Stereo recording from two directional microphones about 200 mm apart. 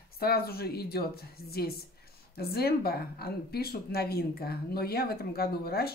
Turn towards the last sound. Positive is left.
turn(degrees=50)  # may be behind; listen again after turning